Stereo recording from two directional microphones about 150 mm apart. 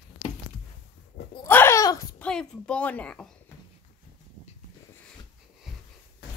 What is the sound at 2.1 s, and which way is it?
A woman's voice, 5° left (ahead or behind).